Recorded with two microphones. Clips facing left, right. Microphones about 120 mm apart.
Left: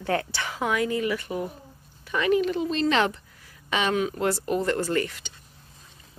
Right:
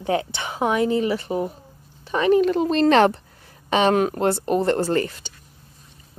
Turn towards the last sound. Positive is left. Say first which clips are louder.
# right 4 dB
turn(degrees=-35)  # may be behind; listen again after turning